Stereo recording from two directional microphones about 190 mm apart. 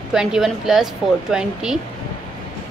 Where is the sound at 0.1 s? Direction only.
5° right (ahead or behind).